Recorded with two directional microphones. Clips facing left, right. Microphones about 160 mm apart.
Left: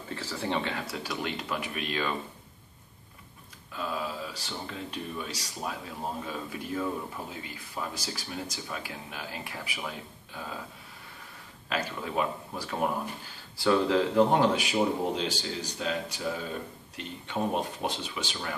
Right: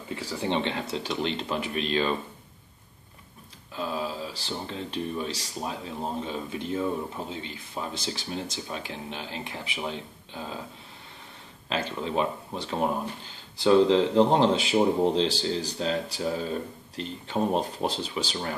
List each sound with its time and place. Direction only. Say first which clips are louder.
0.1 s speech: right 3 dB; 15° right (ahead or behind)
3.7 s speech: right 3 dB; 30° right (ahead or behind)
11.7 s speech: right 3 dB; 25° right (ahead or behind)